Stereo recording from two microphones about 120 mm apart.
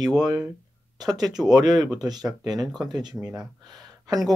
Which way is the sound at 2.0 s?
35° right (ahead or behind).